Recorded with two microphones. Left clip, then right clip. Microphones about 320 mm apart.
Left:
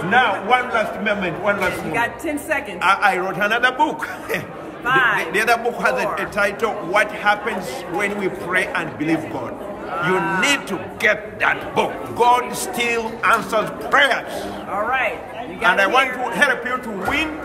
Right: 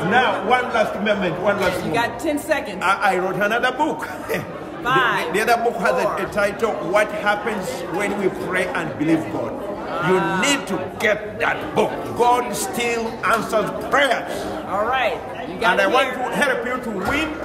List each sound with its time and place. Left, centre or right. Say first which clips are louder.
0.1 s a man's voice: left 2 dB; centre
15.6 s a man's voice: left 1 dB; centre